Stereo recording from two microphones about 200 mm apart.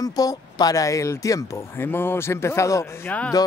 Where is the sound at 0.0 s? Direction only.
20° left (ahead or behind).